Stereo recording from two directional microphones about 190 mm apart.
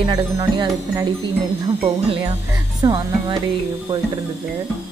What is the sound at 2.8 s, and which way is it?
Speech, 25° right (ahead or behind).